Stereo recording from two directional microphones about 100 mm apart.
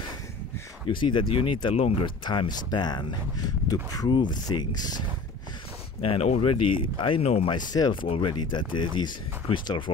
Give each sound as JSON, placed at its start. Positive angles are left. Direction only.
{"t": 0.8, "sound": "speech", "side_deg": 55}
{"t": 5.9, "sound": "speech", "side_deg": 90}
{"t": 7.5, "sound": "speech", "side_deg": 40}
{"t": 7.9, "sound": "speech", "side_deg": 55}